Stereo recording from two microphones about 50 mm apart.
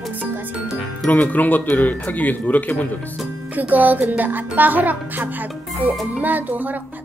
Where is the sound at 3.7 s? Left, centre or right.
Right.